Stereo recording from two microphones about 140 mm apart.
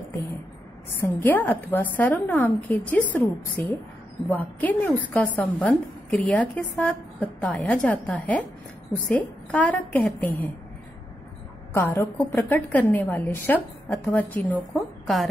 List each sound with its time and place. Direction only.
0.8 s a woman's voice: 15° left (ahead or behind)
11.7 s a woman's voice: 15° left (ahead or behind)